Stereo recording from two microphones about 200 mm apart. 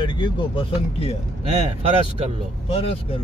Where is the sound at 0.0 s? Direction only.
25° left (ahead or behind).